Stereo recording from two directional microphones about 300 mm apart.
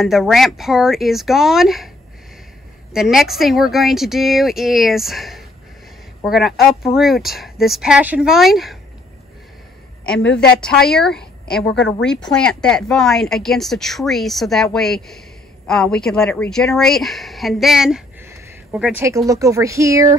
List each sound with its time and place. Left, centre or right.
0.0 s speech: centre
2.9 s speech: centre
10.2 s a woman's voice: left
10.9 s speech: centre